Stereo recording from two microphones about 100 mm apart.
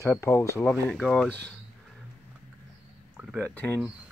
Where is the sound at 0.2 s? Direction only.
25° left (ahead or behind).